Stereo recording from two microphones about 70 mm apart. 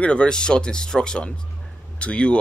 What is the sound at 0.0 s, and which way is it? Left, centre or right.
Speech, centre.